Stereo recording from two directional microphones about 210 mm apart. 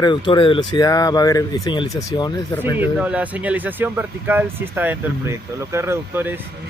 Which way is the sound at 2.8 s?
5° right (ahead or behind).